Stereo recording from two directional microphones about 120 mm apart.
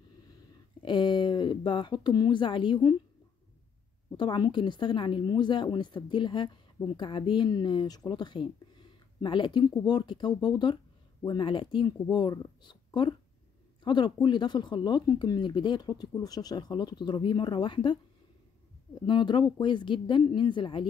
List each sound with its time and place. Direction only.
0.8 s speech: 40° left (ahead or behind)
4.2 s speech: 40° left (ahead or behind)
19.0 s speech: 40° left (ahead or behind)